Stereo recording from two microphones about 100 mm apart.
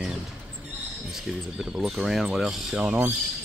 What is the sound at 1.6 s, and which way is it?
Speech, 5° right (ahead or behind).